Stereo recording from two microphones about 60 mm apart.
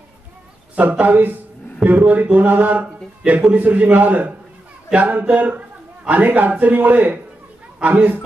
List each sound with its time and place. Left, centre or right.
0.7 s speech: right